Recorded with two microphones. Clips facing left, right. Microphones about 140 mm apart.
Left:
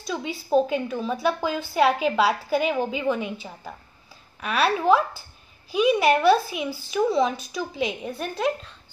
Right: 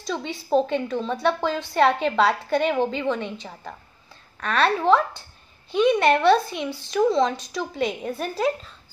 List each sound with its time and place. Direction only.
0.0 s a woman's voice: 5° left (ahead or behind)